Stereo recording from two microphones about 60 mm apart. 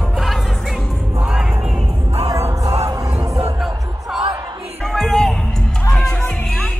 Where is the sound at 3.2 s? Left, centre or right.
Right.